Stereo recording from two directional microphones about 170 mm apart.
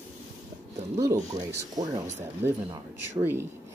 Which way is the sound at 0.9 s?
20° right (ahead or behind).